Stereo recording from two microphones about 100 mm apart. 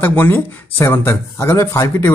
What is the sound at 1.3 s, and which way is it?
Speech, 30° left (ahead or behind).